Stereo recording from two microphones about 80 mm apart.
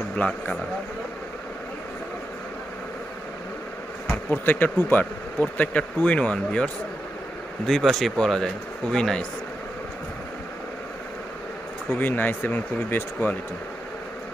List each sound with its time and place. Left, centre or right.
0.1 s speech: centre
4.1 s speech: left; by 9.2 s centre
11.9 s speech: left